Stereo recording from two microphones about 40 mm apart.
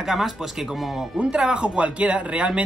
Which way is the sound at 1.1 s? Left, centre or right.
Right.